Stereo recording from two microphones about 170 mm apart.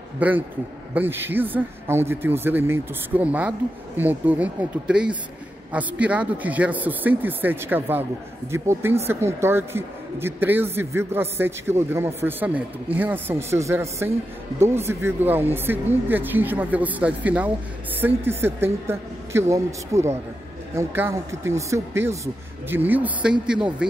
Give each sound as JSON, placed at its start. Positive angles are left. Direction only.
{"t": 0.2, "sound": "a man's voice", "side_deg": -10}